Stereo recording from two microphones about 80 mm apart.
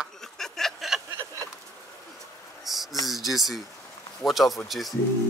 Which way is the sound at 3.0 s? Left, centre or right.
Centre.